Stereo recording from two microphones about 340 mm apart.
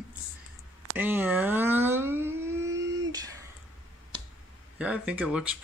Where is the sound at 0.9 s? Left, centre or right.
Centre.